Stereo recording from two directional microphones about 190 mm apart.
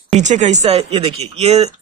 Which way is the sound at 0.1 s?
40° right (ahead or behind).